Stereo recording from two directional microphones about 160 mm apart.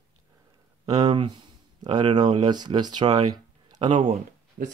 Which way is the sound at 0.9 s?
25° right (ahead or behind).